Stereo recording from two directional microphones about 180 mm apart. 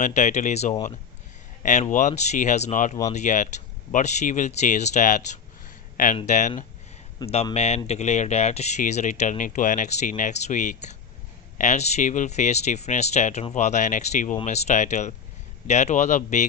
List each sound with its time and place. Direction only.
0.0 s speech: 40° left (ahead or behind)
7.2 s speech: 20° left (ahead or behind)
7.5 s speech: 35° left (ahead or behind)